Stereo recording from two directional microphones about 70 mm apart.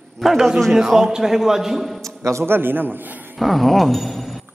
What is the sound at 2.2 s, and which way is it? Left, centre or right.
Speech, right.